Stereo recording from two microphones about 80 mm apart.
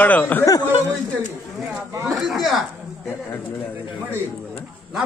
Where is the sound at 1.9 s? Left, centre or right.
Right.